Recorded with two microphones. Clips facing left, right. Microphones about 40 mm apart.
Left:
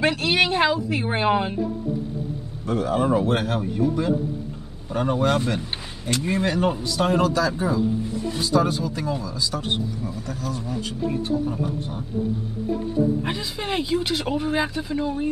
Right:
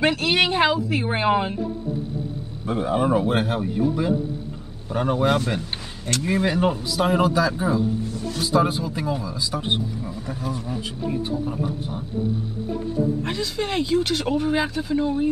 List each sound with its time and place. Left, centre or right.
0.0 s speech: centre
2.6 s a man's voice: right
5.6 s speech: centre
6.4 s a man's voice: centre; by 10.6 s right
11.2 s a man's voice: centre
13.2 s speech: centre